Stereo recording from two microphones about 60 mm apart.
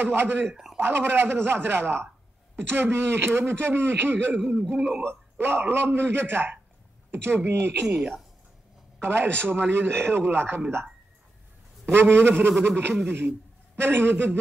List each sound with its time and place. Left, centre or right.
0.0 s a man's voice: right
4.5 s a man's voice: right
5.0 s a man's voice: right
9.0 s a man's voice: right
11.8 s a man's voice: right